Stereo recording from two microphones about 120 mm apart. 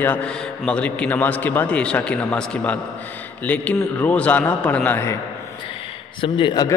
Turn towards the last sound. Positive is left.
turn(degrees=45)  # may be behind; listen again after turning